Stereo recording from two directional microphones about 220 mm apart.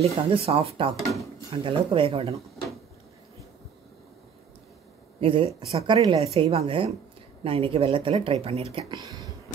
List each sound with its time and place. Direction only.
0.0 s speech: 25° right (ahead or behind)
5.2 s speech: 25° right (ahead or behind)